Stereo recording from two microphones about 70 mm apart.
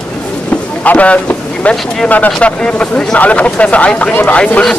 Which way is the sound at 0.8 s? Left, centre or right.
Centre.